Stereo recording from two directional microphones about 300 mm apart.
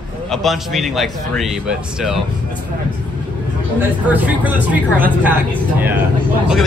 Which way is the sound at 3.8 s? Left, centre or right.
Centre.